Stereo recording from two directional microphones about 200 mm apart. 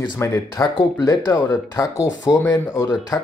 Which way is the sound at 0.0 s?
15° left (ahead or behind).